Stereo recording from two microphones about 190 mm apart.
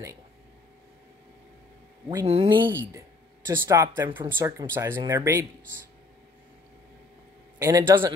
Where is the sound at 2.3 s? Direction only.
30° right (ahead or behind).